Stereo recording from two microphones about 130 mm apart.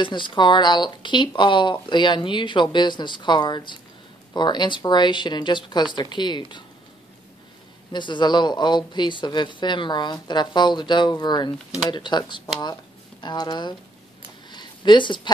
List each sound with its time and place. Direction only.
0.0 s speech: 40° left (ahead or behind)
7.9 s speech: 35° left (ahead or behind)
14.5 s a sound: 35° left (ahead or behind)